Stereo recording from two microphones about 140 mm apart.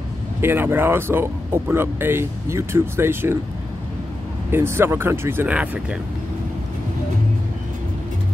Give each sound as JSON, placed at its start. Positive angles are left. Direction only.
{"t": 0.4, "sound": "speech", "side_deg": -15}
{"t": 4.5, "sound": "speech", "side_deg": -20}